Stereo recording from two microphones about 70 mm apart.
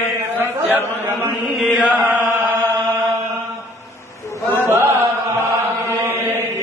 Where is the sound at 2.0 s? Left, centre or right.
Right.